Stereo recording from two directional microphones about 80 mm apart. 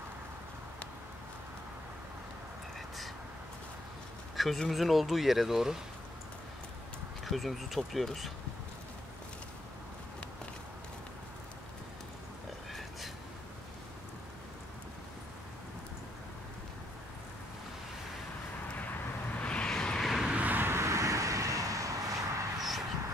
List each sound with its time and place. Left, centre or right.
4.4 s speech: centre
7.2 s speech: centre
18.8 s vehicle: centre
20.2 s vehicle: centre; by 22.2 s right
22.6 s a sound: centre